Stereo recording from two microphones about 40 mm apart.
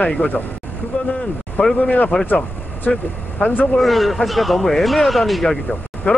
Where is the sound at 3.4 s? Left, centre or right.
Left.